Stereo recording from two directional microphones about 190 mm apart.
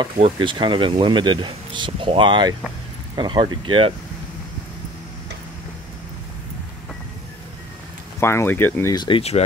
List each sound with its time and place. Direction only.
0.2 s speech: 25° right (ahead or behind)
8.2 s speech: 15° left (ahead or behind)
8.9 s speech: 25° left (ahead or behind)